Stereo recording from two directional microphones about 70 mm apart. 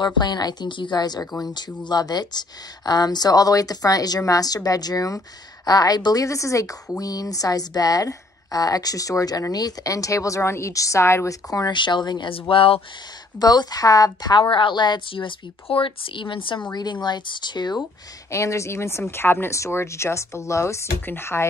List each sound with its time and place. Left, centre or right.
0.0 s a woman's voice: left
1.4 s a woman's voice: left
6.2 s a woman's voice: left
11.7 s speech: left
13.4 s speech: left
16.7 s speech: left
18.3 s speech: left